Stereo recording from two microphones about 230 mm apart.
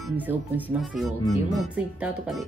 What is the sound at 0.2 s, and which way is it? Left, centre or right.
Speech, centre.